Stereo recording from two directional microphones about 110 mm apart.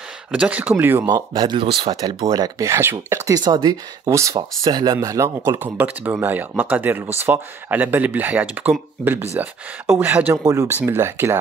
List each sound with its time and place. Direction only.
0.3 s speech: 10° right (ahead or behind)
1.3 s speech: 45° right (ahead or behind)
2.0 s speech: 35° right (ahead or behind)
3.3 s speech: 40° right (ahead or behind)
4.4 s speech: 40° right (ahead or behind)
4.9 s speech: 30° right (ahead or behind)
5.6 s speech: 15° right (ahead or behind)
10.4 s speech: 30° right (ahead or behind)